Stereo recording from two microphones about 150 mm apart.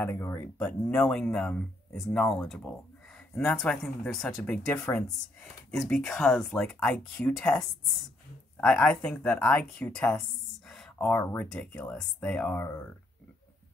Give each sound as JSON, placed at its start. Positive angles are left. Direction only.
{"t": 0.0, "sound": "speech", "side_deg": 15}